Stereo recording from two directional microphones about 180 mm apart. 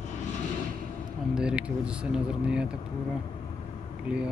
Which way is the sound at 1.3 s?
5° right (ahead or behind).